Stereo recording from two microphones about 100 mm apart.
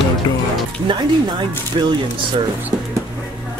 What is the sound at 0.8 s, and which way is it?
Speech, 45° right (ahead or behind).